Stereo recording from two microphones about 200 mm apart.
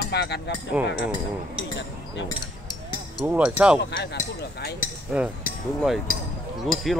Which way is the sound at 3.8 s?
60° left (ahead or behind).